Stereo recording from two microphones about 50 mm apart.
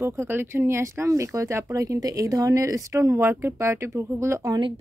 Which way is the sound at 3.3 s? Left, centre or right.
Right.